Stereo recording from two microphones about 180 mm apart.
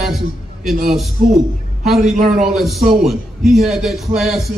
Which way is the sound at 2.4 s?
Centre (ahead or behind).